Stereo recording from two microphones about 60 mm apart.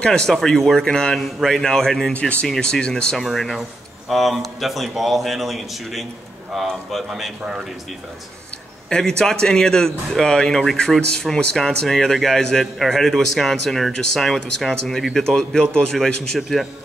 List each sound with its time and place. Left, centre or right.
0.3 s a man's voice: centre
2.1 s speech: left
2.4 s a man's voice: centre
3.3 s a man's voice: centre
8.8 s a man's voice: centre
16.3 s a man's voice: centre